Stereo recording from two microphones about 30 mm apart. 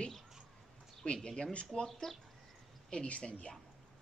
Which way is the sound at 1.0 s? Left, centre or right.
Left.